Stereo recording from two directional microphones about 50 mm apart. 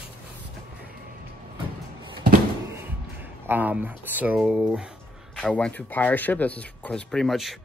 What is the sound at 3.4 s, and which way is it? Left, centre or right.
Speech, right.